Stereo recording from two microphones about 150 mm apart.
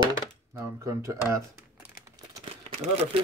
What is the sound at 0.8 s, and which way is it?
Speech, 20° right (ahead or behind).